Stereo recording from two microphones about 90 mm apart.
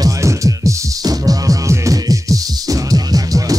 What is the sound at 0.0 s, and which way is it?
Music, 35° right (ahead or behind).